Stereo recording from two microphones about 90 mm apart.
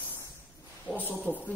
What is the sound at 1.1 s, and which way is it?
Speech, 20° left (ahead or behind).